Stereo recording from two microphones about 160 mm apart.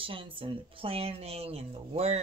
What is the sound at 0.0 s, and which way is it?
Speech, 35° right (ahead or behind).